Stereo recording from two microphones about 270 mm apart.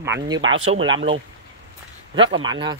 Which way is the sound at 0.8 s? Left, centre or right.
Right.